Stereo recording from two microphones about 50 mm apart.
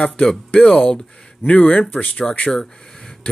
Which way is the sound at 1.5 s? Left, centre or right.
Left.